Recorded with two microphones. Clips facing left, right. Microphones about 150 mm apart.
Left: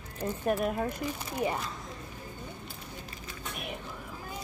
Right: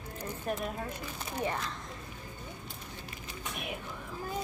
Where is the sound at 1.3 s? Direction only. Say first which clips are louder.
Left 2 dB; 10° left (ahead or behind).